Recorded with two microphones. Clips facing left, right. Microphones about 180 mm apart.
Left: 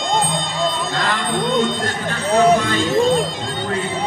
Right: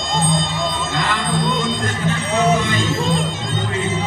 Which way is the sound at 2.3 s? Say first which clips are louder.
Left 4 dB; 35° left (ahead or behind).